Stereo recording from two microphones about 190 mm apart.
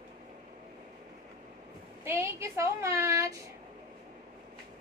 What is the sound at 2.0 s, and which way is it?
Speech, 15° right (ahead or behind).